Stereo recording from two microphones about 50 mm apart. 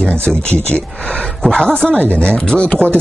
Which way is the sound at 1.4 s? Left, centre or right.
Centre.